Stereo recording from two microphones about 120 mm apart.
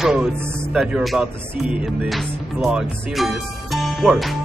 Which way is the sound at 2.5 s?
5° right (ahead or behind).